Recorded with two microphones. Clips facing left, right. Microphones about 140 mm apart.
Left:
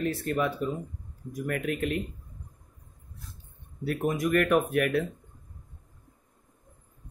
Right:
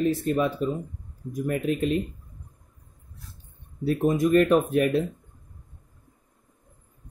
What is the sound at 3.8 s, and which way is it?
Speech, 25° right (ahead or behind).